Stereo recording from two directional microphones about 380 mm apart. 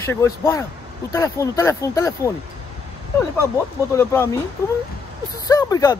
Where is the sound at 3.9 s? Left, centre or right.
Centre.